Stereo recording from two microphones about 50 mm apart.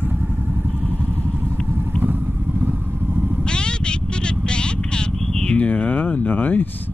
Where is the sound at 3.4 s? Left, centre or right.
Centre; by 6.7 s left.